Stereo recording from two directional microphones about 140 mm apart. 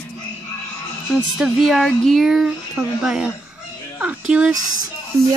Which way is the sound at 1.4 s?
Centre (ahead or behind).